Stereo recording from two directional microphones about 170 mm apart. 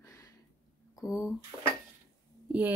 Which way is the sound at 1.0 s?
20° left (ahead or behind).